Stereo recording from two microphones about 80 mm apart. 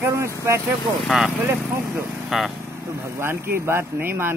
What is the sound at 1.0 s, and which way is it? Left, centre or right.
Speech, centre.